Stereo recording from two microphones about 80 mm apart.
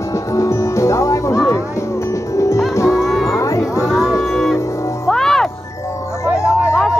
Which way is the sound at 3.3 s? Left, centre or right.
Left.